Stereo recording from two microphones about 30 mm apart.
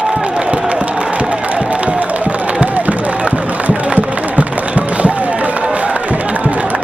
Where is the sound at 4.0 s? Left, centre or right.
Right.